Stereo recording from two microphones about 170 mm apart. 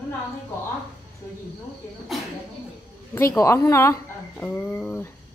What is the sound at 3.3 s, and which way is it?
A woman's voice, 20° left (ahead or behind).